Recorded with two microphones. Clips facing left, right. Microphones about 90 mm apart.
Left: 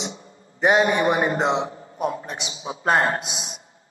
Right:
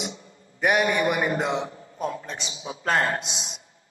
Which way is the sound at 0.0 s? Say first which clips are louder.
Left 1 dB; 25° left (ahead or behind).